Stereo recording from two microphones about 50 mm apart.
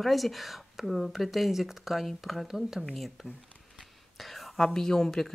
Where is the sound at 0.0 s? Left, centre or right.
Centre.